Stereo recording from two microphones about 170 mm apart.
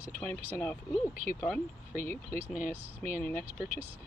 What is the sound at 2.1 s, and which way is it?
Speech, 15° left (ahead or behind).